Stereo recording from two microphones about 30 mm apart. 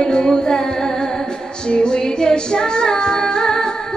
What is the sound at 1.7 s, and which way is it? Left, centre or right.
Music, left.